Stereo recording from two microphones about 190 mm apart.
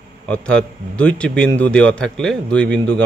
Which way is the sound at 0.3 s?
5° left (ahead or behind).